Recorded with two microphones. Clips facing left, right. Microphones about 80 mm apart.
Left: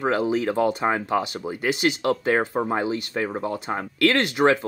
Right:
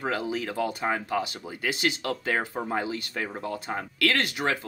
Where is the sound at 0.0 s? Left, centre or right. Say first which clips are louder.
Left 7 dB; left.